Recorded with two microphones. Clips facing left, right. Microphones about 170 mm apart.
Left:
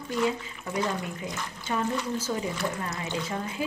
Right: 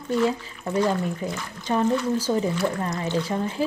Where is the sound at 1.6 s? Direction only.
35° right (ahead or behind).